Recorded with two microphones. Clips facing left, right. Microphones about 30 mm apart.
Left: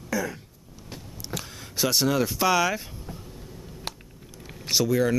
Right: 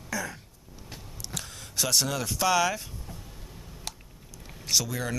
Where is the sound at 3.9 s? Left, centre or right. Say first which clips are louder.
Left 4 dB; left.